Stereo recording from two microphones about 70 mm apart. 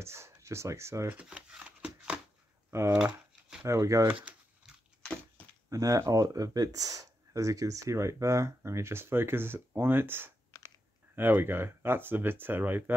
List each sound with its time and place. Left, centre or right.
0.0 s speech: right
1.2 s scissors: centre
2.7 s speech: right
3.0 s crumpling: centre
3.6 s speech: right
4.1 s a sound: centre
5.7 s speech: right
10.5 s chewing: left
11.1 s speech: right